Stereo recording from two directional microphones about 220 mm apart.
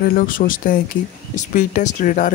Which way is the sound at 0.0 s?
40° left (ahead or behind).